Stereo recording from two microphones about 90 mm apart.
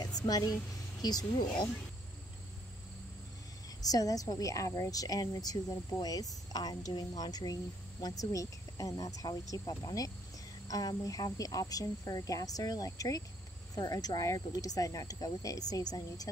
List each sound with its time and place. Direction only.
1.0 s a woman's voice: 50° left (ahead or behind)
3.8 s a woman's voice: 45° left (ahead or behind)